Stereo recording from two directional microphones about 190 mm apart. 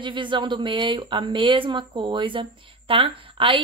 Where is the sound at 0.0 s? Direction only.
25° right (ahead or behind).